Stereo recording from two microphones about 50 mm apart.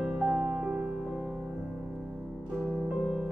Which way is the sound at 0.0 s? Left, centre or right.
Centre.